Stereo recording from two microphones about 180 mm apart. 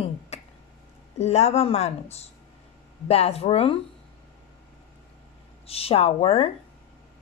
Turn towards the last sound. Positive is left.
turn(degrees=35)  # may be behind; listen again after turning